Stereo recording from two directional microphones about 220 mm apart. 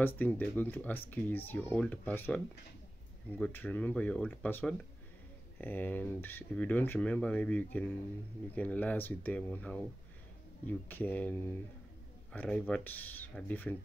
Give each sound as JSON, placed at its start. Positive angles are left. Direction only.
{"t": 0.0, "sound": "speech", "side_deg": 10}